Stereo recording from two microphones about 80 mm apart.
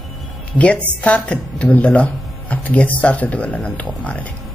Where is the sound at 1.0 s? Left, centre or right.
Centre.